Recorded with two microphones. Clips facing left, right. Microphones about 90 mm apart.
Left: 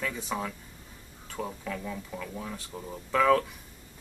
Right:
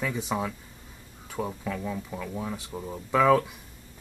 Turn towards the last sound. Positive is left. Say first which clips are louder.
# right 2 dB
turn(degrees=-10)  # may be behind; listen again after turning